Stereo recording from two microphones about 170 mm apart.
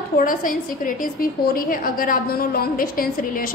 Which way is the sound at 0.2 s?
55° left (ahead or behind).